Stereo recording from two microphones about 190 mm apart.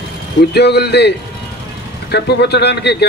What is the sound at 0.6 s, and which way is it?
A man's voice, 60° left (ahead or behind).